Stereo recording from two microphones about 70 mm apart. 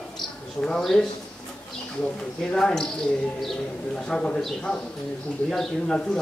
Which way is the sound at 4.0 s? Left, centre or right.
Centre.